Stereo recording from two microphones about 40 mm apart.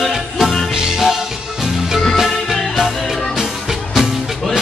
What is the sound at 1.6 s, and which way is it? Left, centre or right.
Music, centre.